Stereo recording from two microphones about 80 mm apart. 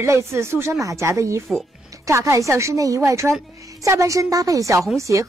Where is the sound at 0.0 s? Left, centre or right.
Right.